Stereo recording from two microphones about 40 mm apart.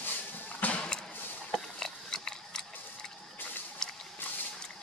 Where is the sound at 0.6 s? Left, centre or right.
Left.